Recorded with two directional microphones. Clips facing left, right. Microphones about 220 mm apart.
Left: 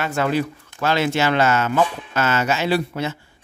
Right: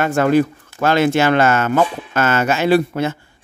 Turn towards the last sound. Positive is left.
turn(degrees=-50)  # may be behind; listen again after turning